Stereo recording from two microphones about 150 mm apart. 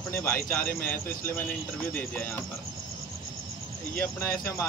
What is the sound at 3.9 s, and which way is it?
Speech, 15° left (ahead or behind).